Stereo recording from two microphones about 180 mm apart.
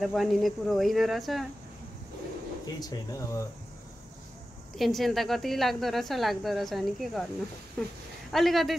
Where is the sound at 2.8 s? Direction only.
20° left (ahead or behind).